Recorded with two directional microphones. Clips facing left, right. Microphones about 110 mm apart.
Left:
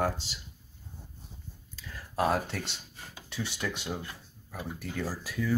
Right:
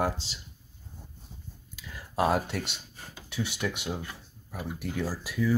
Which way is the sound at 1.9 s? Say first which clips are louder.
Right 2 dB; 15° right (ahead or behind).